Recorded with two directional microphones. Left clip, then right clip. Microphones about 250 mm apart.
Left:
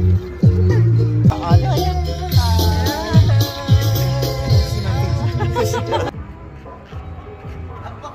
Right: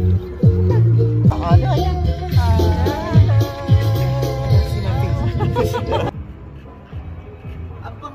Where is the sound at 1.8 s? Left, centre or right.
Left.